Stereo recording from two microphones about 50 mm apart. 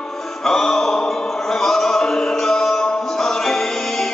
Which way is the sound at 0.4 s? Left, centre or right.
Centre.